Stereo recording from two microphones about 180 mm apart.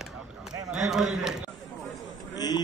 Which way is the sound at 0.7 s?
5° right (ahead or behind).